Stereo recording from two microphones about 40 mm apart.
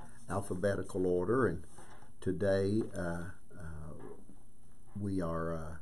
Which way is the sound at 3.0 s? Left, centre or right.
Centre.